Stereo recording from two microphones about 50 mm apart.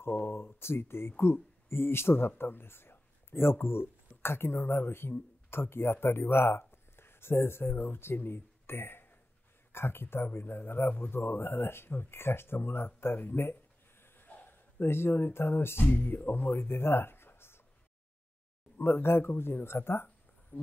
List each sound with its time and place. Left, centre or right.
0.0 s speech: left
14.0 s a sound: left
14.9 s speech: left
15.8 s speech: left
16.3 s speech: left
18.8 s speech: left
20.5 s a sound: left